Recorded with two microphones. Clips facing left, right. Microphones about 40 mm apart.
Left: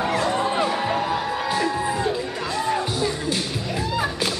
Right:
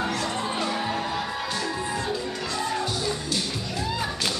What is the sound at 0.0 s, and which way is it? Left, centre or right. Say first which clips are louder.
Music: left 6 dB; centre.